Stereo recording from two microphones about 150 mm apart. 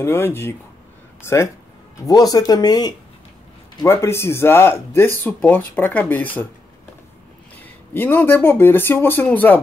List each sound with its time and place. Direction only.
0.0 s speech: 15° left (ahead or behind)
7.9 s speech: 15° left (ahead or behind)